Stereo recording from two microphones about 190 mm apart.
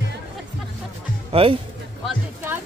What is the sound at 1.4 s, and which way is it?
Speech, 30° right (ahead or behind).